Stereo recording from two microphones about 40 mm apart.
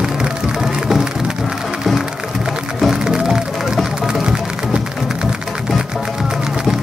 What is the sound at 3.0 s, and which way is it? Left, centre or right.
Music, centre.